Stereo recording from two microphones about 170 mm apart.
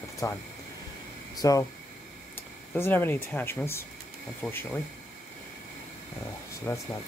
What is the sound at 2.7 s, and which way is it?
Speech, 15° left (ahead or behind).